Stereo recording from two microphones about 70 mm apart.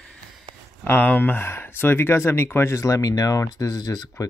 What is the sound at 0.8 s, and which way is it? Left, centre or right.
Speech, left.